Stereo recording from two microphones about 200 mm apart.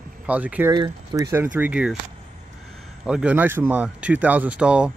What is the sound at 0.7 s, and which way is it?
Speech, 20° right (ahead or behind).